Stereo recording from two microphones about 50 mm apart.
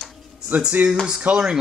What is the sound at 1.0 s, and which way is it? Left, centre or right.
Speech, centre.